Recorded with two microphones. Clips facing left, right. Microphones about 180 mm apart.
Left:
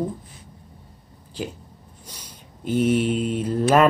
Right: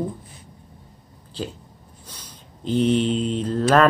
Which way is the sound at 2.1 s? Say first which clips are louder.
Even; 10° left (ahead or behind).